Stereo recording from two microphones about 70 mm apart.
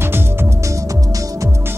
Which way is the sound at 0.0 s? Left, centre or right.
Right.